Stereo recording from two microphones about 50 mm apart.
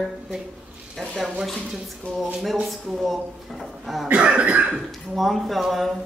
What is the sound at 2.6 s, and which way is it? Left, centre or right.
A woman's voice, centre.